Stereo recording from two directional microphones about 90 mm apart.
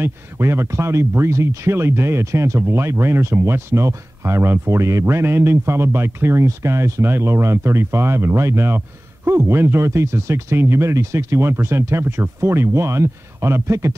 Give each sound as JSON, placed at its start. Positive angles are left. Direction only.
{"t": 0.0, "sound": "speech", "side_deg": -30}